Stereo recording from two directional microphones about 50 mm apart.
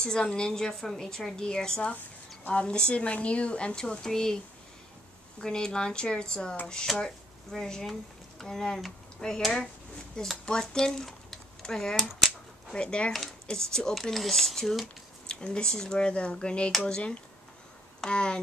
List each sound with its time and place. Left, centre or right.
0.0 s a woman's voice: centre
5.4 s a woman's voice: centre
6.9 s speech: centre
7.5 s a woman's voice: centre
10.4 s a woman's voice: centre
13.1 s a woman's voice: centre
15.2 s a woman's voice: centre